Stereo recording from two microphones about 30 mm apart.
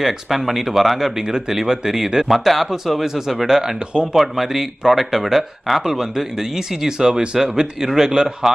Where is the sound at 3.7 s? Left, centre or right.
Right.